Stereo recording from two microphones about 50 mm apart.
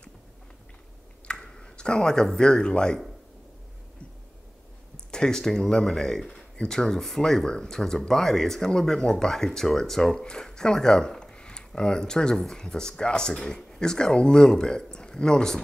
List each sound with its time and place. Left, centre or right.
1.2 s a sound: centre
2.3 s speech: centre
5.1 s speech: centre